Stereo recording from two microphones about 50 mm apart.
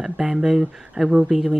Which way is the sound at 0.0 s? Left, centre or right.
Centre.